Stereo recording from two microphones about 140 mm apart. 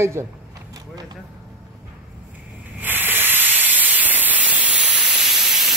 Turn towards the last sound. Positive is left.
turn(degrees=0)  # may be behind; listen again after turning